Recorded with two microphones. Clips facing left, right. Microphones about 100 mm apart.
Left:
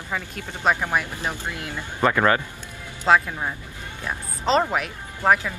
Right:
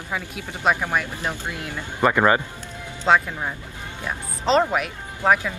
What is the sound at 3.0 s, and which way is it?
Speech, centre (ahead or behind).